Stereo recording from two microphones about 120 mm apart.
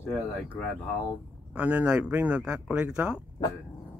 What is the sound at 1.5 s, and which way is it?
Speech, 15° right (ahead or behind).